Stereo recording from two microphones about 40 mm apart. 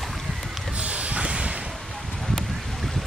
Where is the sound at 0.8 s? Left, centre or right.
Right.